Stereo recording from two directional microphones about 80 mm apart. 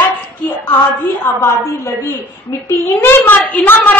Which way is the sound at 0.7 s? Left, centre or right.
Left.